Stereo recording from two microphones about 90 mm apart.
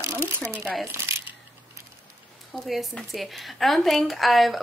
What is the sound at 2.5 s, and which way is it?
A woman's voice, centre (ahead or behind).